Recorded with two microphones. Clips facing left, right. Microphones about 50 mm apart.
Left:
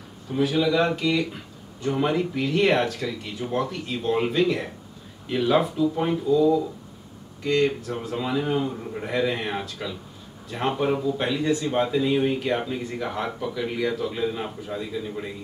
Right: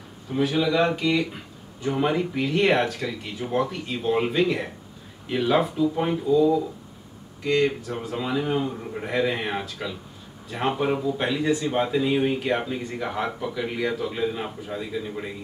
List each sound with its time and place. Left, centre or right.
0.3 s speech: centre